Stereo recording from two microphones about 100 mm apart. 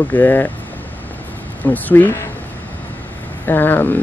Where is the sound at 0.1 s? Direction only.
20° left (ahead or behind).